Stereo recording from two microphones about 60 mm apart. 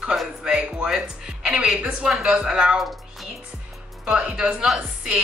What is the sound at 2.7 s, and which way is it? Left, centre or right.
Speech, centre.